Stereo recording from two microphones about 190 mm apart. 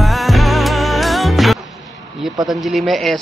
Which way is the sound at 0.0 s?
Centre (ahead or behind).